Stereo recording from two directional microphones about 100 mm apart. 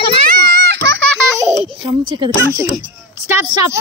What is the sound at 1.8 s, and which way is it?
Speech, 55° right (ahead or behind).